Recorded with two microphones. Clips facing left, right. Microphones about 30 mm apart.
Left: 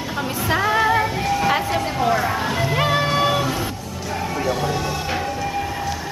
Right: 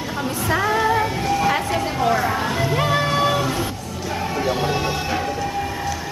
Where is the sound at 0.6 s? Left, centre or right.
Centre.